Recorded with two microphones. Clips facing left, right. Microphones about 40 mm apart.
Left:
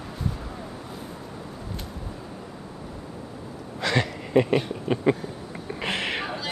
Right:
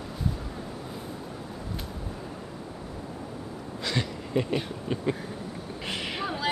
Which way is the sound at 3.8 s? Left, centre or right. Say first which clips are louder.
Left 6 dB; left.